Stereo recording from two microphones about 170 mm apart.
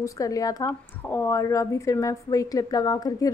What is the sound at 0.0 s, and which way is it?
A woman's voice, 20° left (ahead or behind).